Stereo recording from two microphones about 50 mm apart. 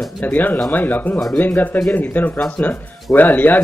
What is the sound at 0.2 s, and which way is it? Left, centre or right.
Speech, left.